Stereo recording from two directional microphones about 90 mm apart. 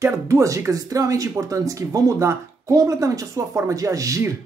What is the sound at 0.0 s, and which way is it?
Speech, 35° right (ahead or behind).